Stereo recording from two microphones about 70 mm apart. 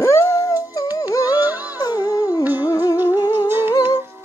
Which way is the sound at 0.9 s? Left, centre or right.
Left.